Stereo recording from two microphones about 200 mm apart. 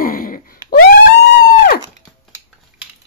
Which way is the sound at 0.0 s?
45° left (ahead or behind).